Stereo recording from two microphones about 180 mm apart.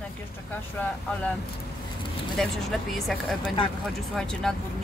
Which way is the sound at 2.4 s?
Centre (ahead or behind).